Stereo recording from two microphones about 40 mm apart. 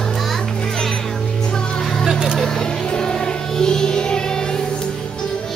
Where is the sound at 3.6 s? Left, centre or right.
Centre.